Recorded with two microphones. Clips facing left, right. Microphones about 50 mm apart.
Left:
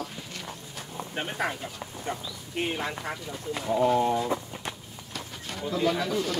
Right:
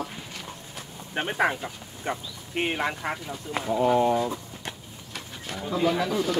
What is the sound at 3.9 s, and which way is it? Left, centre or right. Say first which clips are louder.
Speech: right 6 dB; centre.